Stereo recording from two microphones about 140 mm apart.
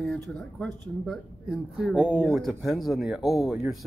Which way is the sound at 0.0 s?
5° left (ahead or behind).